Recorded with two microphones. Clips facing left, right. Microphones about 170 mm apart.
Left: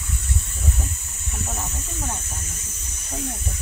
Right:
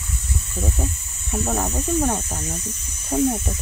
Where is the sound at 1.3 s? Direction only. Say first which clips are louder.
Right 9 dB; 70° right (ahead or behind).